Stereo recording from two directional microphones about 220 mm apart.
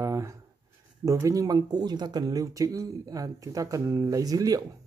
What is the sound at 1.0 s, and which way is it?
Speech, 15° right (ahead or behind).